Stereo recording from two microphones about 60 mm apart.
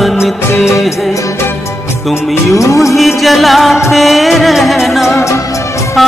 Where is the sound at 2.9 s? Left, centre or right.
Centre.